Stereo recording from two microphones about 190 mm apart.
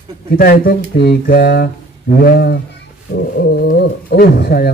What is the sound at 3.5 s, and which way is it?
A man's voice, 55° left (ahead or behind).